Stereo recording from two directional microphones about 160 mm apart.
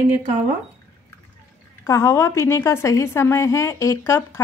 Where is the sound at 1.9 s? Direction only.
15° left (ahead or behind).